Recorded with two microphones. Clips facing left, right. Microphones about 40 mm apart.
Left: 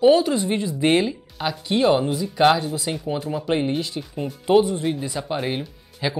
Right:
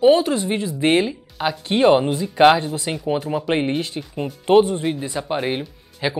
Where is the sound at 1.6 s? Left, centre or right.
Right.